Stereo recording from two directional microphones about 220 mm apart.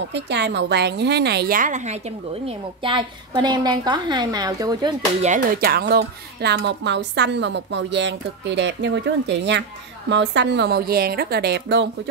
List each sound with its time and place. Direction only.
0.1 s a woman's voice: 50° right (ahead or behind); by 4.9 s 15° right (ahead or behind)
5.2 s speech: 40° right (ahead or behind)